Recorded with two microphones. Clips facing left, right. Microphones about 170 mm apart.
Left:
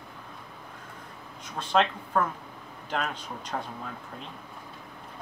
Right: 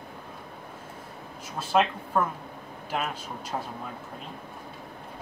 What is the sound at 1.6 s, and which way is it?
Speech, 5° right (ahead or behind).